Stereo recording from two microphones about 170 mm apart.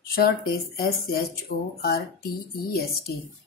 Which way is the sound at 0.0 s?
60° left (ahead or behind).